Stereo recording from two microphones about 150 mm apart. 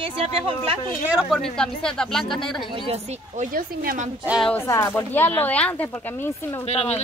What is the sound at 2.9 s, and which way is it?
Speech, 60° right (ahead or behind).